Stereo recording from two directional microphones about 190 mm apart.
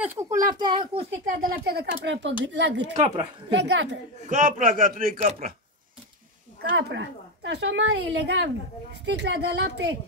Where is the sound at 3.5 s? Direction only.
65° right (ahead or behind).